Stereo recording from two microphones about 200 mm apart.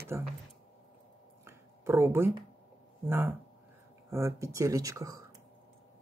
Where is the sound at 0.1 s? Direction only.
15° right (ahead or behind).